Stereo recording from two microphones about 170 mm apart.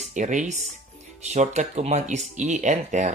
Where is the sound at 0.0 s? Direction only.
45° right (ahead or behind).